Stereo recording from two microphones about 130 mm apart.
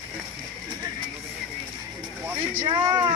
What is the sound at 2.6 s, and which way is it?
Speech, 35° right (ahead or behind).